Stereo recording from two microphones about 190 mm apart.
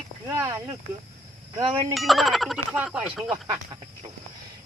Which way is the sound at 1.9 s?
Centre (ahead or behind).